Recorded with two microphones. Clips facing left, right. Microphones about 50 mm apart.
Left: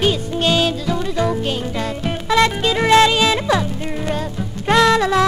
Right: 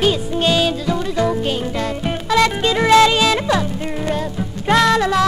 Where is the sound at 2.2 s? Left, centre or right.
Left.